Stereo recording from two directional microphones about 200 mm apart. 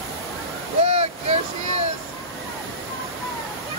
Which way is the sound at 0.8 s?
30° right (ahead or behind).